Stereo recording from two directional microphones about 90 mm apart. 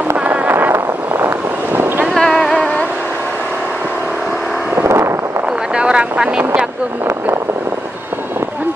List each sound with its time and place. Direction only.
0.2 s boat: 15° right (ahead or behind)
2.1 s boat: 5° left (ahead or behind)
4.8 s wind noise: 30° right (ahead or behind)
5.8 s vehicle: 10° right (ahead or behind)